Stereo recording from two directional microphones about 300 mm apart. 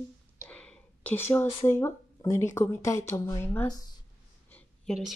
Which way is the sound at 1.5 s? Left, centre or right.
Centre.